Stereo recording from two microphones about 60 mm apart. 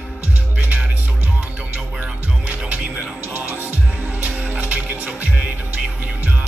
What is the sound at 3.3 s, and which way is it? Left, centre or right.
Music, right.